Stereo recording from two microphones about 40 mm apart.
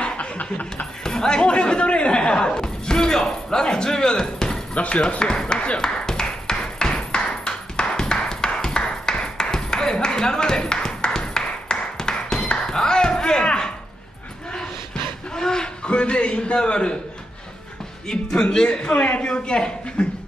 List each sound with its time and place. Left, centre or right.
0.0 s snicker: left
1.0 s speech: centre
4.7 s a sound: left
15.3 s a sound: centre
15.9 s a man's voice: left
18.0 s a man's voice: left